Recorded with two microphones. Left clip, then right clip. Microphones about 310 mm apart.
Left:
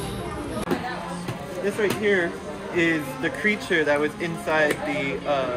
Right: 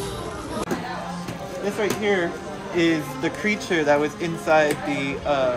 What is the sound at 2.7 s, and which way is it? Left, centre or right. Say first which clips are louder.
Speech: right 1 dB; right.